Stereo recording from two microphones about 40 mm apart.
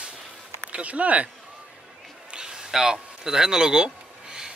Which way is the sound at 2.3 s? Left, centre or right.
Centre.